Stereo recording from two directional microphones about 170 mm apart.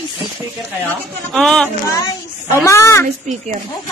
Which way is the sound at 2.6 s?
15° left (ahead or behind).